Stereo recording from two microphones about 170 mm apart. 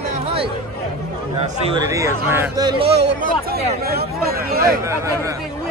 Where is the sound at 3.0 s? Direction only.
65° right (ahead or behind).